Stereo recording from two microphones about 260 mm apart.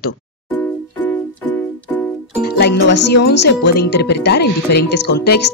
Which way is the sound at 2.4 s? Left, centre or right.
Left.